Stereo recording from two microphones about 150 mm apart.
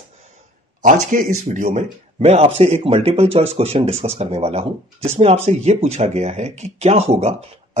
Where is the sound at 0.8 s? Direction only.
60° right (ahead or behind).